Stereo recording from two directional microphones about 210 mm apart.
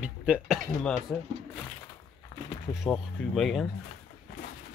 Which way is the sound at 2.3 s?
25° left (ahead or behind).